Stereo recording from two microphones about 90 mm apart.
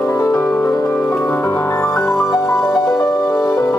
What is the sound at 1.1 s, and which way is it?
Music, 15° left (ahead or behind).